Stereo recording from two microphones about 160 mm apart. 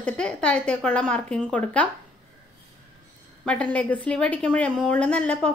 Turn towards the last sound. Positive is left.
turn(degrees=5)  # may be behind; listen again after turning